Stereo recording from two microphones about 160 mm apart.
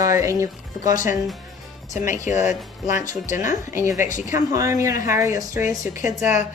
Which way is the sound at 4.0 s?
55° left (ahead or behind).